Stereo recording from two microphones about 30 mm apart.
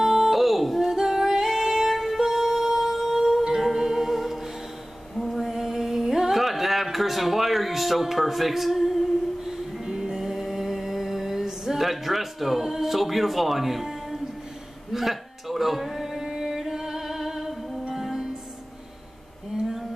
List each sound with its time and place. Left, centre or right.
0.0 s music: centre
5.1 s female singing: centre
5.5 s a sound: centre
9.8 s music: centre
10.2 s mantra: centre
11.4 s music: centre
14.9 s male singing: centre
17.7 s music: centre